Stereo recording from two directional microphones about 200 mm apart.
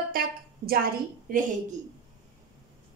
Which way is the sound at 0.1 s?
45° right (ahead or behind).